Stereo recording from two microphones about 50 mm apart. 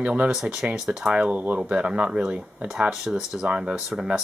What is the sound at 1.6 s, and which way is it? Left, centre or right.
Speech, centre.